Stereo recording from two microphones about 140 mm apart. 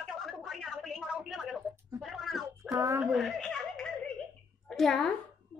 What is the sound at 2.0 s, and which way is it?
Cat, centre (ahead or behind).